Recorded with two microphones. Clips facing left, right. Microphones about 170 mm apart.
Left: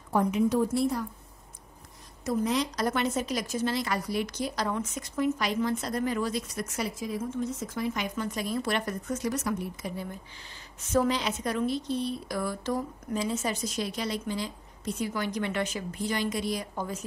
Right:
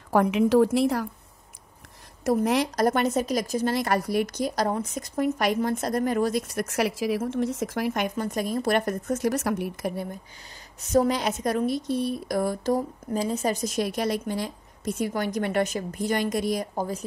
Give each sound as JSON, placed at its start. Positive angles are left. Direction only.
{"t": 0.1, "sound": "a woman's voice", "side_deg": -85}
{"t": 2.3, "sound": "a woman's voice", "side_deg": -65}
{"t": 2.7, "sound": "a woman's voice", "side_deg": -45}
{"t": 3.7, "sound": "a woman's voice", "side_deg": -50}
{"t": 6.6, "sound": "speech", "side_deg": -80}
{"t": 10.8, "sound": "a woman's voice", "side_deg": -40}